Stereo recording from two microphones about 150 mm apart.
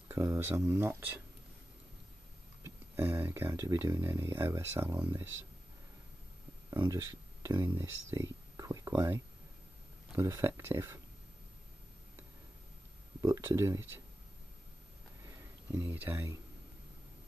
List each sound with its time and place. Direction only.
0.1 s speech: 20° right (ahead or behind)
2.6 s speech: 15° right (ahead or behind)
6.7 s speech: 20° right (ahead or behind)
13.2 s speech: 20° right (ahead or behind)
15.2 s a sound: 15° right (ahead or behind)